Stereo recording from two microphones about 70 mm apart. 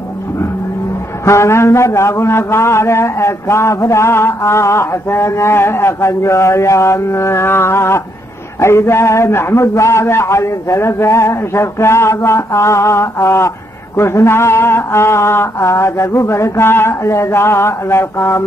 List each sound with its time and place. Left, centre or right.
1.2 s a man's voice: left